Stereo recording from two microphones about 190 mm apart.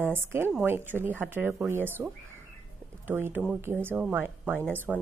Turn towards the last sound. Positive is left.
turn(degrees=-5)  # may be behind; listen again after turning